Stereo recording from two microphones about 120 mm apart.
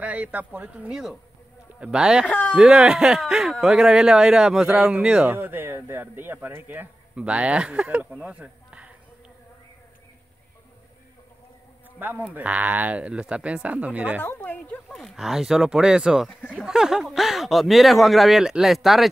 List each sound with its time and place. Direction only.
0.0 s speech: 10° right (ahead or behind)
2.2 s speech: 10° left (ahead or behind)
2.5 s speech: 5° right (ahead or behind)
12.0 s speech: 15° right (ahead or behind)
14.2 s speech: 15° left (ahead or behind)
14.9 s speech: centre (ahead or behind)
16.3 s speech: 10° left (ahead or behind)
16.6 s speech: 5° right (ahead or behind)